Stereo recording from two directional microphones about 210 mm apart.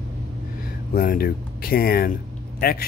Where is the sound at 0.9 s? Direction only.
45° left (ahead or behind).